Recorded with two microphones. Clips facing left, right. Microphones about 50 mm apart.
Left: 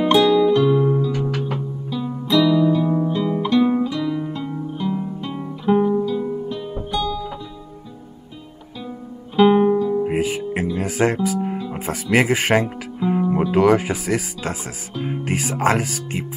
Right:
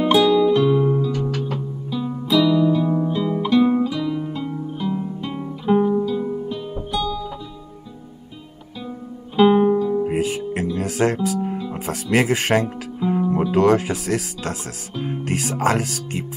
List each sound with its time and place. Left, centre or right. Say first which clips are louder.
0.0 s music: left 1 dB; centre
1.9 s music: even; centre
9.4 s music: even; centre
10.1 s music: left 1 dB; centre
11.7 s speech: left 1 dB; centre